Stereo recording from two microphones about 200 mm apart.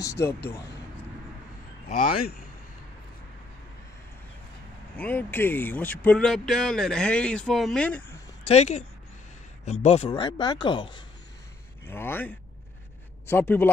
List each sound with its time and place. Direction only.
0.0 s speech: 15° left (ahead or behind)
1.9 s a man's voice: 50° left (ahead or behind)
4.9 s speech: 10° left (ahead or behind)
8.5 s speech: 35° left (ahead or behind)
11.9 s speech: 10° left (ahead or behind)